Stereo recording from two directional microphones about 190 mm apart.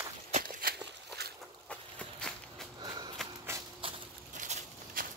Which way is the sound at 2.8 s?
20° right (ahead or behind).